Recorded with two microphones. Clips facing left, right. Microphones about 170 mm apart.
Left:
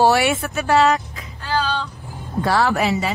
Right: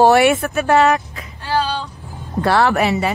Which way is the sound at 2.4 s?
65° right (ahead or behind).